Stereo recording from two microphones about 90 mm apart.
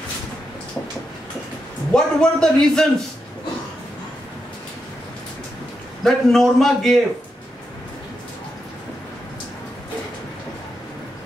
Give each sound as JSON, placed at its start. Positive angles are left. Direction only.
{"t": 1.9, "sound": "a man's voice", "side_deg": 10}
{"t": 6.0, "sound": "a man's voice", "side_deg": 5}